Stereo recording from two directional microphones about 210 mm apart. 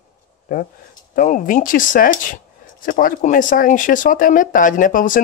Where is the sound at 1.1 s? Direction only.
40° left (ahead or behind).